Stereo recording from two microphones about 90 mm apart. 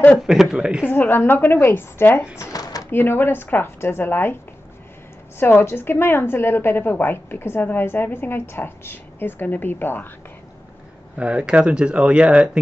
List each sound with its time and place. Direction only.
0.3 s speech: 5° right (ahead or behind)
0.8 s a woman's voice: 20° left (ahead or behind)
2.5 s a sound: 45° left (ahead or behind)
2.9 s a woman's voice: 25° left (ahead or behind)
5.4 s a woman's voice: 25° left (ahead or behind)
11.1 s speech: 10° right (ahead or behind)